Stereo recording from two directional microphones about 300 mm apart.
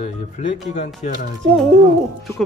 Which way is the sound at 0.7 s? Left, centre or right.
Left.